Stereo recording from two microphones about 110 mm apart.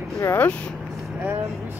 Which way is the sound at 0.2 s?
25° left (ahead or behind).